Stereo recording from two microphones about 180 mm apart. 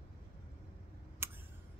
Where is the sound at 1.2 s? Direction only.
10° right (ahead or behind).